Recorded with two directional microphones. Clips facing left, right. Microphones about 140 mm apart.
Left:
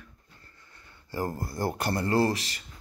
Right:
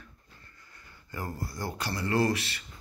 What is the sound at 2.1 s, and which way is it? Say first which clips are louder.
Speech: even; 35° left (ahead or behind).